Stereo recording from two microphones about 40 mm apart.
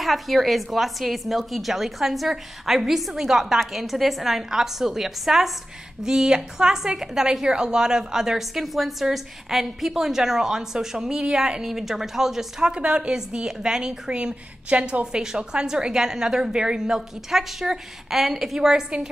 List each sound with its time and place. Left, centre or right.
0.0 s a woman's voice: centre
6.0 s a woman's voice: centre
11.6 s a woman's voice: centre
12.7 s a woman's voice: right
15.2 s a woman's voice: centre